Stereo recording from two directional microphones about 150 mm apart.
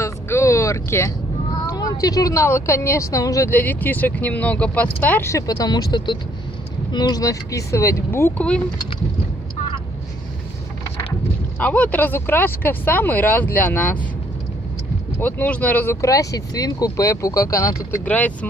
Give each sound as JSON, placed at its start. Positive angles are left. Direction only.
{"t": 0.0, "sound": "vehicle", "side_deg": 20}
{"t": 1.8, "sound": "speech", "side_deg": 25}
{"t": 3.5, "sound": "speech", "side_deg": 10}
{"t": 11.6, "sound": "speech", "side_deg": 10}
{"t": 15.1, "sound": "speech", "side_deg": 10}
{"t": 18.0, "sound": "speech", "side_deg": 10}